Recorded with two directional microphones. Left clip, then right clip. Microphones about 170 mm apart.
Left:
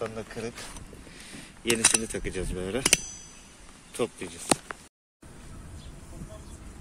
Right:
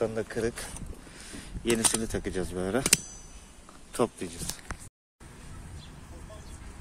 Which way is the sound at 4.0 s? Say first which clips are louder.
Right 2 dB; 25° right (ahead or behind).